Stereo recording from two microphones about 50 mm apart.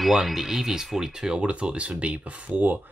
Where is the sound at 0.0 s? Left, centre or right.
Centre; by 2.6 s right.